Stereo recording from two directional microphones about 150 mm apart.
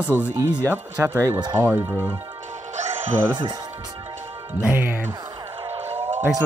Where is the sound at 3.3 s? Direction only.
25° right (ahead or behind).